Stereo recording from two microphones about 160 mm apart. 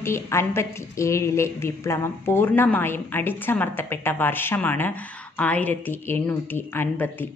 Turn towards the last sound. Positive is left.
turn(degrees=15)  # may be behind; listen again after turning